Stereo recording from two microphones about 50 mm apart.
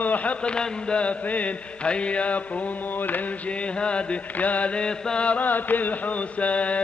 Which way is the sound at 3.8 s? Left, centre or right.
Left.